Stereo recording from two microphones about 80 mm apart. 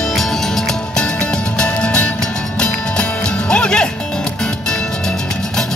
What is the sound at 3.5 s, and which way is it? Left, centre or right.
Music, centre.